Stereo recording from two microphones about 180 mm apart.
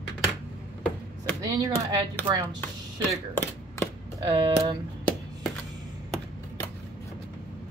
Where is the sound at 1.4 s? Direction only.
20° right (ahead or behind).